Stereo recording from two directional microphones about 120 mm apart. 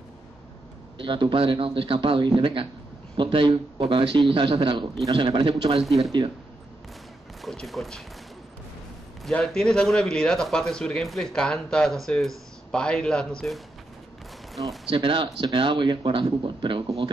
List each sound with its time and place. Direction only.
0.9 s speech: 45° right (ahead or behind)
7.4 s speech: centre (ahead or behind)
9.2 s speech: 5° left (ahead or behind)
14.9 s speech: 45° right (ahead or behind)